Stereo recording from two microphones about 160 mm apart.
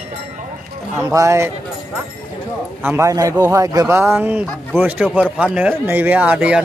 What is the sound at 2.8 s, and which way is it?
Speech, 15° right (ahead or behind).